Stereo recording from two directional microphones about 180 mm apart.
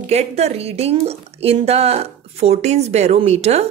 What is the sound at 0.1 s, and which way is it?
A woman's voice, 35° right (ahead or behind).